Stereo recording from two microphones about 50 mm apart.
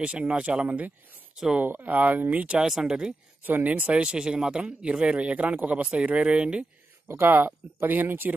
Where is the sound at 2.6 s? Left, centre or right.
Centre.